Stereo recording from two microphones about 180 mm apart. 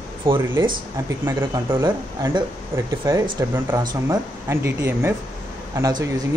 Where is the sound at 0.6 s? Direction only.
25° right (ahead or behind).